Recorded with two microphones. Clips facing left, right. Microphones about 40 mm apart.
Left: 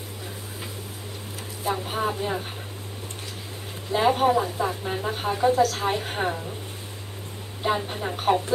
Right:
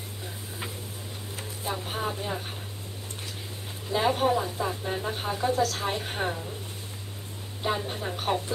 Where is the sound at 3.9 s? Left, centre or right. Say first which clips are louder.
Left 4 dB; centre.